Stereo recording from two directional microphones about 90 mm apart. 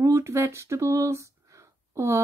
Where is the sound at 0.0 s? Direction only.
30° right (ahead or behind).